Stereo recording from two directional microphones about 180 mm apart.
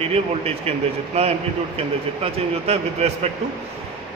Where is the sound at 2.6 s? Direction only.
35° right (ahead or behind).